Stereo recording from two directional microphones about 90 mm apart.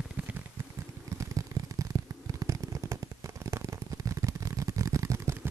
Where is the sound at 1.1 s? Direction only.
35° right (ahead or behind).